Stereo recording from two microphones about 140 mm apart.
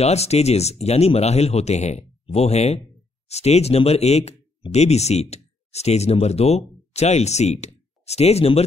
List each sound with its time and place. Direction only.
0.0 s speech: 50° left (ahead or behind)